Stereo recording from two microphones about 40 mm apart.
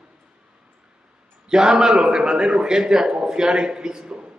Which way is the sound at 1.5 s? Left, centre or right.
Centre.